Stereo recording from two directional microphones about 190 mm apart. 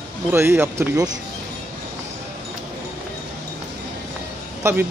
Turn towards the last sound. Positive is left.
turn(degrees=-15)  # may be behind; listen again after turning